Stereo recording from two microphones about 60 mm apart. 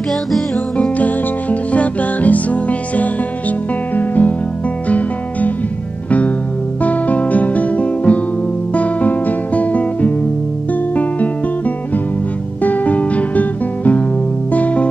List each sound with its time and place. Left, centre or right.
0.7 s music: left
12.6 s music: left